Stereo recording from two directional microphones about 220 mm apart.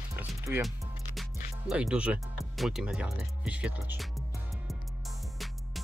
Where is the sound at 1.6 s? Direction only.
5° right (ahead or behind).